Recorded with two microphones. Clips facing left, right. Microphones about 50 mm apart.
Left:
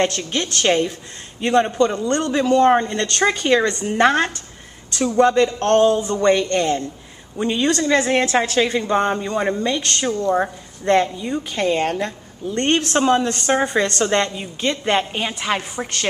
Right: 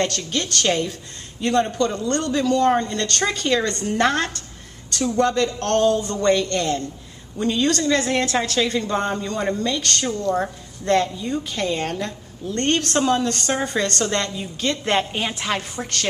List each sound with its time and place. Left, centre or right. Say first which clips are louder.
0.0 s a woman's voice: left 3 dB; left
14.7 s a woman's voice: left 2 dB; centre